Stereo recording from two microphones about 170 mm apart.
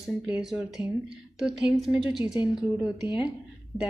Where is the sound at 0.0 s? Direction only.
Centre (ahead or behind).